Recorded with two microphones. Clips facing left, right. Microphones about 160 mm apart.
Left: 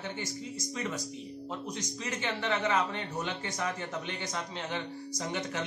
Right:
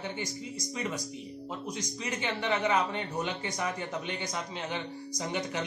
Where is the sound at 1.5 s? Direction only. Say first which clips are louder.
Right 1 dB; 10° right (ahead or behind).